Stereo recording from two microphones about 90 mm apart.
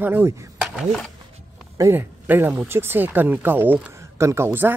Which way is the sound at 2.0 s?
20° right (ahead or behind).